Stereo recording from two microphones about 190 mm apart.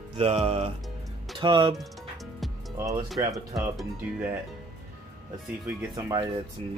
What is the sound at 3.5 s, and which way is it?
Speech, 5° right (ahead or behind).